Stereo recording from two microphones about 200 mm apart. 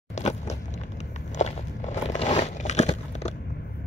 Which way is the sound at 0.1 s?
35° left (ahead or behind).